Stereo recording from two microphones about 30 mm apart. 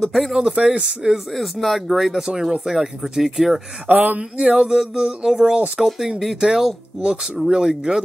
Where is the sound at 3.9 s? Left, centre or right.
Right.